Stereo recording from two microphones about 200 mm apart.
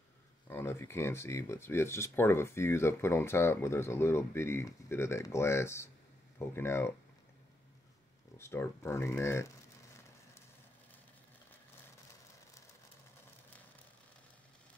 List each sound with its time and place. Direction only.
0.5 s speech: 10° left (ahead or behind)
8.4 s speech: 10° left (ahead or behind)